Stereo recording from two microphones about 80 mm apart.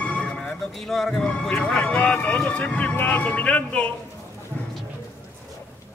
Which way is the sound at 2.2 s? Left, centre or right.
Centre.